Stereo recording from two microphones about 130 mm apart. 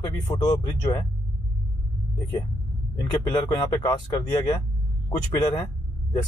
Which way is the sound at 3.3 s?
35° left (ahead or behind).